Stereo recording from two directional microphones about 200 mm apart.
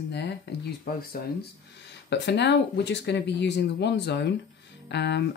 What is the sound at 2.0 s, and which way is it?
Speech, 60° left (ahead or behind).